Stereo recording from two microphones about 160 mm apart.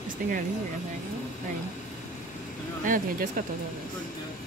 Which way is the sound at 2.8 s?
60° right (ahead or behind).